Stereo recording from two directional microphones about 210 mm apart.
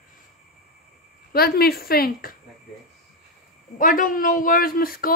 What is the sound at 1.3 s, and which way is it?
Speech, 45° left (ahead or behind).